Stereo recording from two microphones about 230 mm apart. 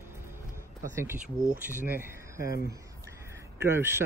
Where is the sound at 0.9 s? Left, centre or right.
Centre.